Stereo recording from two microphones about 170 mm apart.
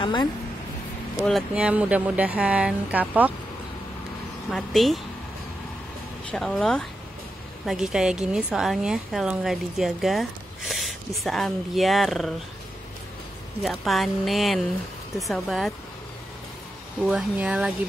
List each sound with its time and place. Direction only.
0.0 s speech: 25° left (ahead or behind)
1.2 s speech: 5° right (ahead or behind)
4.5 s speech: centre (ahead or behind)
6.3 s speech: 5° left (ahead or behind)
13.6 s speech: centre (ahead or behind)
17.0 s speech: 5° right (ahead or behind)